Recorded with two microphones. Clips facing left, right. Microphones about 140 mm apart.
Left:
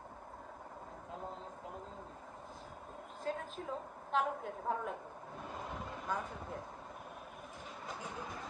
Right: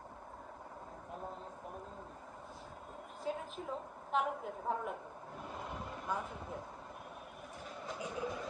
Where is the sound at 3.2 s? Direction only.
Centre (ahead or behind).